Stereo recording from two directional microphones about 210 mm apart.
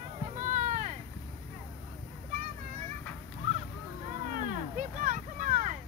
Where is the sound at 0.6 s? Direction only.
40° right (ahead or behind).